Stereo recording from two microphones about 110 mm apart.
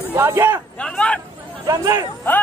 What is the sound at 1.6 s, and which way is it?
Speech, 30° right (ahead or behind).